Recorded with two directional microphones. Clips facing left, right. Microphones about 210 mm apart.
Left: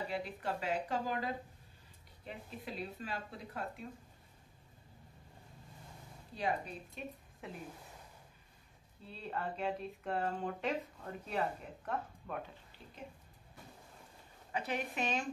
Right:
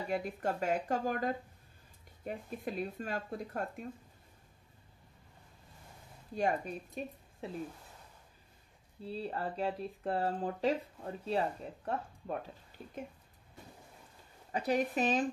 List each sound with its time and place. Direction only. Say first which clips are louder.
0.1 s speech: right 4 dB; 45° right (ahead or behind)
6.3 s speech: right 4 dB; 45° right (ahead or behind)
7.4 s speech: right 5 dB; 30° right (ahead or behind)
9.0 s speech: right 4 dB; 35° right (ahead or behind)
12.8 s speech: right 9 dB; 45° right (ahead or behind)
14.5 s speech: right 7 dB; 40° right (ahead or behind)